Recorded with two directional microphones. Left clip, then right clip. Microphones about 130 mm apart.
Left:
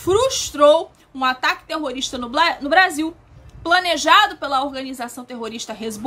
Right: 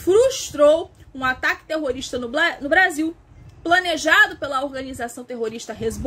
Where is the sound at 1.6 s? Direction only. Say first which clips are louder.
Even; 30° left (ahead or behind).